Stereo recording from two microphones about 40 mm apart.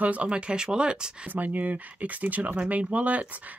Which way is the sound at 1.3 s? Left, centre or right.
Right.